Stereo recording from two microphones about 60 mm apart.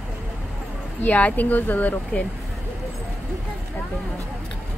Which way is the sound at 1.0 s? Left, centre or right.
Left.